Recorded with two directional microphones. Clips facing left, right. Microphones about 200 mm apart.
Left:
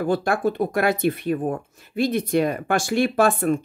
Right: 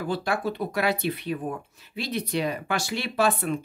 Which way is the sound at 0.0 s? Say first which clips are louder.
Left 6 dB; 50° left (ahead or behind).